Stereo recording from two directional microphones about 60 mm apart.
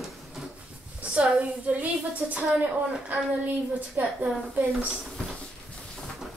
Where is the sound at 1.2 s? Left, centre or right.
Right.